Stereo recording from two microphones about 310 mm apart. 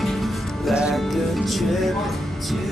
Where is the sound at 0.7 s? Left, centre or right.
Centre.